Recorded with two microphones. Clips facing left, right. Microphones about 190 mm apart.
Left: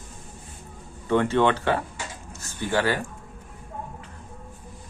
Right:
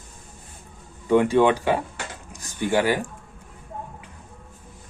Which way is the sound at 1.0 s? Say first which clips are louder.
Right 3 dB; 15° right (ahead or behind).